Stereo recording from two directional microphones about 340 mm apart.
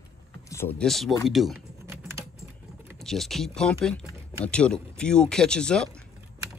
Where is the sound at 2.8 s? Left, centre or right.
Centre.